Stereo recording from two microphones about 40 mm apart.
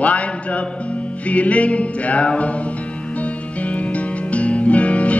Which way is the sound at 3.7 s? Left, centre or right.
Left.